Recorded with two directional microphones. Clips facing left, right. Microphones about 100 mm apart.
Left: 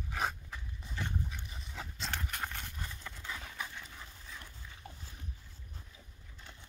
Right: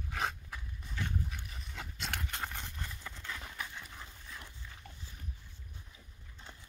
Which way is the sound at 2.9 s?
5° right (ahead or behind).